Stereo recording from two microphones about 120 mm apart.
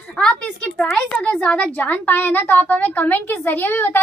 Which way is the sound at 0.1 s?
5° left (ahead or behind).